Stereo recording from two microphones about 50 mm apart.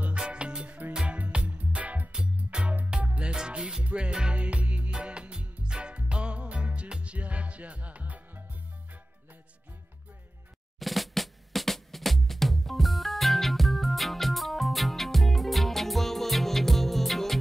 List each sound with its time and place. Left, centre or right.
0.2 s music: right
10.8 s music: centre